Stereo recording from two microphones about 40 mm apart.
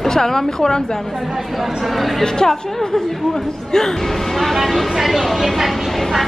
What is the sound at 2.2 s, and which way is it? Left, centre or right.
Speech, centre.